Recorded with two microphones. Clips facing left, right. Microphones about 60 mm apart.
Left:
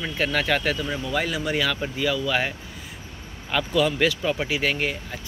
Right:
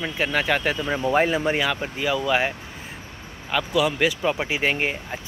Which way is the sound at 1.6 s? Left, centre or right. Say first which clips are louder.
Even; centre.